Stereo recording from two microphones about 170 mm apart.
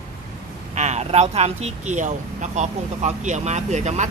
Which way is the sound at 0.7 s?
40° right (ahead or behind).